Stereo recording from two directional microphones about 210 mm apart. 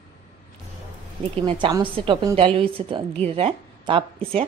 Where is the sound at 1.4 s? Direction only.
20° right (ahead or behind).